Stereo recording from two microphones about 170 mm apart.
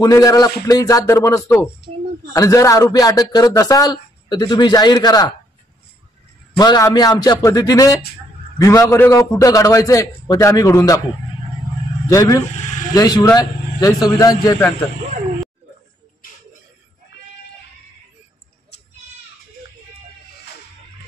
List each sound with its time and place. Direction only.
0.0 s a man's voice: 20° left (ahead or behind)
6.6 s a man's voice: 25° left (ahead or behind)
12.1 s a man's voice: 20° left (ahead or behind)